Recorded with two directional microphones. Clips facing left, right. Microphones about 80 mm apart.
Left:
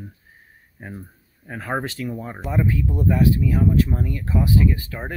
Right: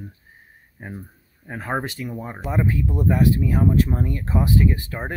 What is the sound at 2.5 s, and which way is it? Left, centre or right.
Speech, right.